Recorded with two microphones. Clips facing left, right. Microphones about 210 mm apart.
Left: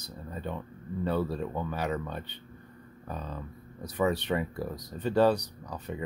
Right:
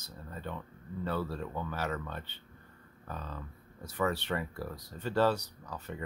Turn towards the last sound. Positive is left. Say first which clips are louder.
# left 4 dB
turn(degrees=15)  # may be behind; listen again after turning